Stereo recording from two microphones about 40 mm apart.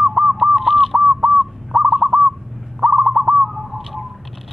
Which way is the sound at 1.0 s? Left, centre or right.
Centre.